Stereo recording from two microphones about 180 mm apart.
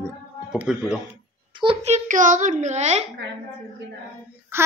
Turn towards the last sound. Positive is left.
turn(degrees=-15)  # may be behind; listen again after turning